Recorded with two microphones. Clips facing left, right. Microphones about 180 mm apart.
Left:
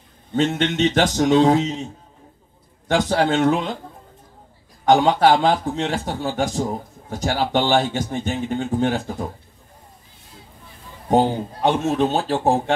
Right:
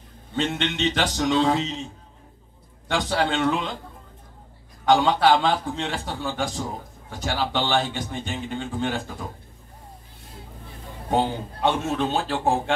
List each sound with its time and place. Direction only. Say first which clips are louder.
0.4 s a man's voice: left 6 dB; 45° left (ahead or behind)
2.9 s a man's voice: left 5 dB; 40° left (ahead or behind)
4.8 s a man's voice: left 3 dB; 40° left (ahead or behind)
11.1 s a man's voice: left 6 dB; 40° left (ahead or behind)